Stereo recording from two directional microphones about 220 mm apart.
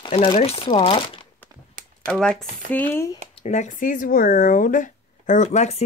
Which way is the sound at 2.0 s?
5° left (ahead or behind).